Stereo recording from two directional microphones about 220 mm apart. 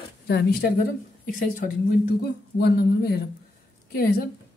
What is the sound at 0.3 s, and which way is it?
A woman's voice, 45° left (ahead or behind).